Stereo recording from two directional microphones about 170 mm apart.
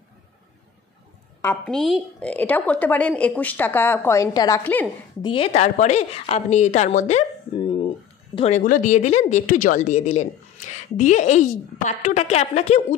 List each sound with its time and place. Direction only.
1.4 s a woman's voice: 5° left (ahead or behind); by 4.6 s 20° left (ahead or behind)
5.2 s a woman's voice: 30° left (ahead or behind)
8.4 s a woman's voice: 45° left (ahead or behind)